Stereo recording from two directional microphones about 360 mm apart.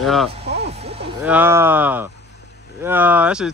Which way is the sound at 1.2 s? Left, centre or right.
Centre.